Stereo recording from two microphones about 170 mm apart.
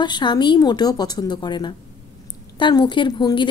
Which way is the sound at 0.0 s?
25° left (ahead or behind).